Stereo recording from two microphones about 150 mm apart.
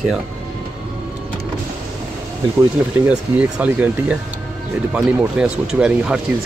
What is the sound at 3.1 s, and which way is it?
Speech, 10° right (ahead or behind).